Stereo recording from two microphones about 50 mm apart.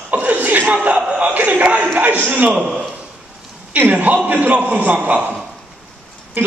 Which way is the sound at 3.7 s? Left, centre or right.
Right.